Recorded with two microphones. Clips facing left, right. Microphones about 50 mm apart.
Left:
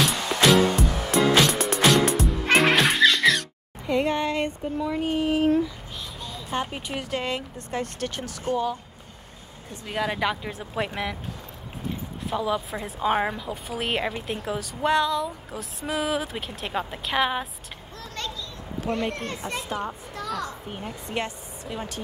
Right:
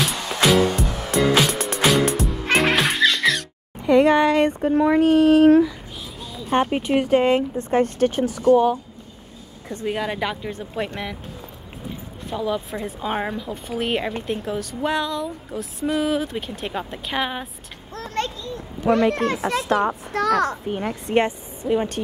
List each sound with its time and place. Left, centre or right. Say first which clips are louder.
0.0 s music: even; centre
3.8 s speech: right 9 dB; right
6.2 s a sound: right 3 dB; centre
6.5 s speech: right 10 dB; right
8.5 s speech: right 11 dB; left
9.8 s a woman's voice: right 1 dB; centre
12.3 s a woman's voice: right 1 dB; centre
17.9 s a sound: right 8 dB; right
19.1 s a child's voice: right 9 dB; right
21.1 s a woman's voice: right 11 dB; right